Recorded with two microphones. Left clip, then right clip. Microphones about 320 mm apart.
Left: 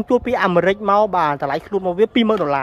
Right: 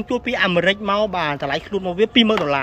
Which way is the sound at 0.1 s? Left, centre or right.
Centre.